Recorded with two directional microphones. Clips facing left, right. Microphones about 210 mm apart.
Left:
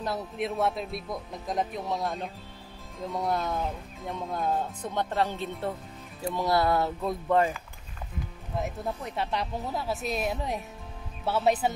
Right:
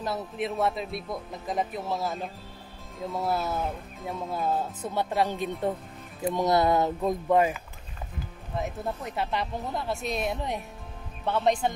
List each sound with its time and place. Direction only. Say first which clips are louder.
0.0 s speech: even; centre (ahead or behind)
8.5 s speech: even; centre (ahead or behind)